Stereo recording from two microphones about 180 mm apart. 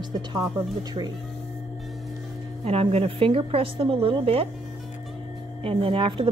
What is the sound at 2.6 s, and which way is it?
A woman's voice, 35° right (ahead or behind).